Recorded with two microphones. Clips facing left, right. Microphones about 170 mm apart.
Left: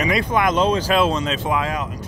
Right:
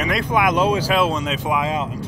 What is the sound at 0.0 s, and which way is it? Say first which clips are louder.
Speech: even; centre (ahead or behind).